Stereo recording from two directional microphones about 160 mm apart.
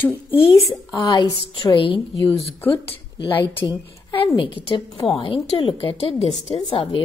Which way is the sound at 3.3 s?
10° left (ahead or behind).